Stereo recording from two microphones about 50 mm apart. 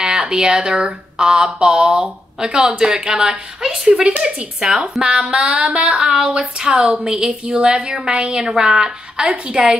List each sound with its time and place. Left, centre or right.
0.0 s speech: centre
5.0 s a sound: centre
5.9 s speech: centre